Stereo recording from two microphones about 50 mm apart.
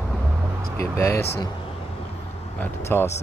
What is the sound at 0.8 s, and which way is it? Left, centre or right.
Speech, left.